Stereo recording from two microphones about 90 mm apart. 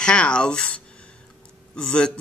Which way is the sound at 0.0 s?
10° left (ahead or behind).